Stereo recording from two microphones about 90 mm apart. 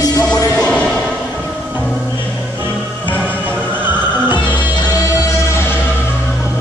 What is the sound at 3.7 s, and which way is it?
Music, 20° right (ahead or behind).